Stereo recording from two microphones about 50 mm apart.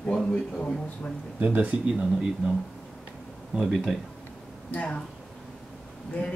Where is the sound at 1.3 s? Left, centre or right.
Right.